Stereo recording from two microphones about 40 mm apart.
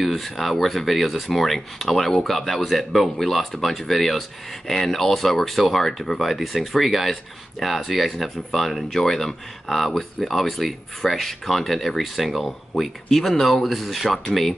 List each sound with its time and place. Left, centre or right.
0.0 s speech: centre